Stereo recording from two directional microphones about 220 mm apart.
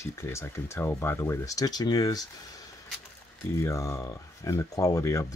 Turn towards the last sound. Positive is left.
turn(degrees=15)  # may be behind; listen again after turning